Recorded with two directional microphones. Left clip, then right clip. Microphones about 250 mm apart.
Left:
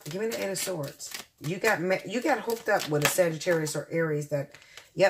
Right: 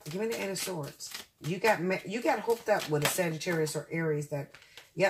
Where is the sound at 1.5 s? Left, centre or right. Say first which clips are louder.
Left 2 dB; left.